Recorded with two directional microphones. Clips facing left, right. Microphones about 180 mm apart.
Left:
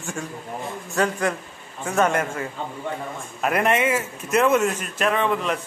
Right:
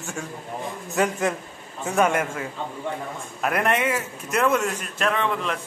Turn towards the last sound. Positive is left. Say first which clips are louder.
# left 2 dB
turn(degrees=5)  # may be behind; listen again after turning